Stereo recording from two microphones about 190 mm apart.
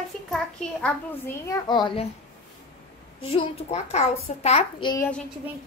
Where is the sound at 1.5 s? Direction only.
25° left (ahead or behind).